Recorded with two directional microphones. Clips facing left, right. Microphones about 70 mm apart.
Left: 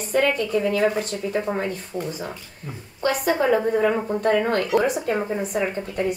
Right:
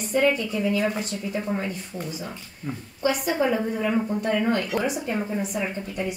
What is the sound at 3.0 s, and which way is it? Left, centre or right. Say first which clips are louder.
A woman's voice: left 2 dB; left.